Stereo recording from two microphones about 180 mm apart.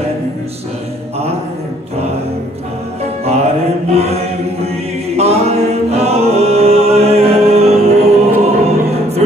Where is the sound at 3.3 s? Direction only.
35° right (ahead or behind).